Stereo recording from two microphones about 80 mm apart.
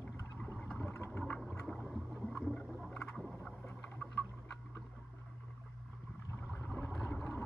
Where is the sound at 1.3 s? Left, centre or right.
Centre.